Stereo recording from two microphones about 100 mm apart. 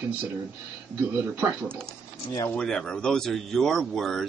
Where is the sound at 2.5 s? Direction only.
10° left (ahead or behind).